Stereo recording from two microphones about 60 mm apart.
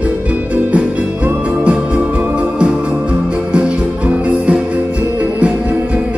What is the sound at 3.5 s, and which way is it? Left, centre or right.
Music, centre.